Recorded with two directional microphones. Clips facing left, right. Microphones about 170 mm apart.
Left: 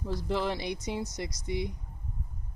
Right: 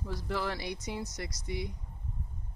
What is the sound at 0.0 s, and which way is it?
Speech, 20° left (ahead or behind).